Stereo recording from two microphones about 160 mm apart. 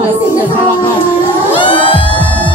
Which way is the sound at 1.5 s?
30° left (ahead or behind).